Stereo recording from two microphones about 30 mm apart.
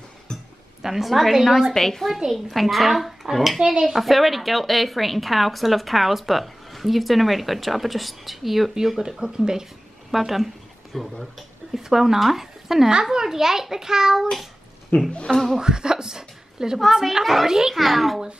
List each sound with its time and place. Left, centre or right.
0.3 s a sound: left
0.8 s speech: centre
1.5 s a woman's voice: centre
3.5 s speech: centre
4.0 s speech: centre
8.7 s speech: centre
10.1 s speech: centre
11.8 s speech: centre
14.9 s speech: left
15.3 s speech: centre
17.2 s speech: centre
17.5 s speech: centre
17.7 s speech: centre